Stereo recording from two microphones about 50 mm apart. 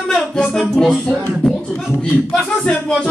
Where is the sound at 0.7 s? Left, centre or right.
Centre.